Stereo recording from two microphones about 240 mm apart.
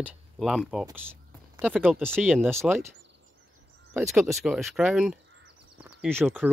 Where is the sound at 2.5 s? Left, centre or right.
Centre.